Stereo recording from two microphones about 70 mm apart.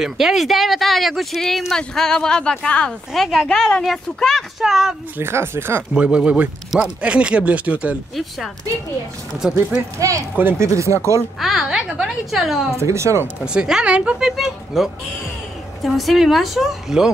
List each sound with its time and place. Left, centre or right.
0.0 s speech: centre
3.1 s speech: centre
5.2 s speech: right
5.9 s speech: centre
9.4 s speech: centre
9.9 s speech: right
11.3 s speech: centre
12.7 s speech: right
13.5 s speech: centre
14.3 s speech: centre